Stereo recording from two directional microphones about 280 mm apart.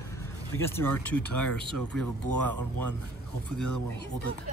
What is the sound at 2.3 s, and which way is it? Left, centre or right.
Speech, right.